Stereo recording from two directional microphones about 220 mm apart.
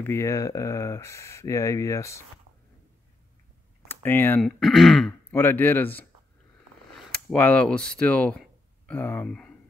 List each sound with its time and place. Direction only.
0.0 s speech: 10° left (ahead or behind)
3.9 s speech: 10° left (ahead or behind)
7.1 s speech: 5° left (ahead or behind)